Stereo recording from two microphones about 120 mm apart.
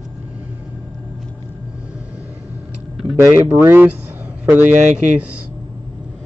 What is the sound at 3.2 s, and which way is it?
Speech, 20° right (ahead or behind).